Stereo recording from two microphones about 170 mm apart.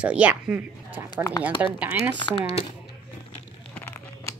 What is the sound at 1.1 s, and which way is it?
Speech, 20° left (ahead or behind).